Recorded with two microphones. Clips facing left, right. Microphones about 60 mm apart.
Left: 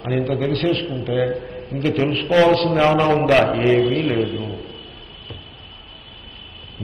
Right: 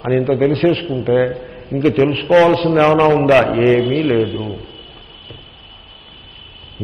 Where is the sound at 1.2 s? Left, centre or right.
Centre.